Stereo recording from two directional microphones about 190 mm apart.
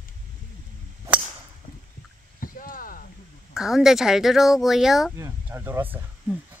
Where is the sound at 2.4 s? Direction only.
45° left (ahead or behind).